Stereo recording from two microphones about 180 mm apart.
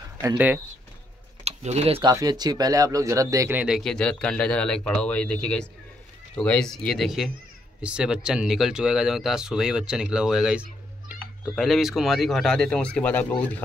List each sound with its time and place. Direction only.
1.4 s speech: 35° right (ahead or behind); by 13.3 s 10° left (ahead or behind)